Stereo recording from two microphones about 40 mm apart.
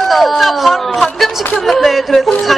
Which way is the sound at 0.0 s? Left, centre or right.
Centre.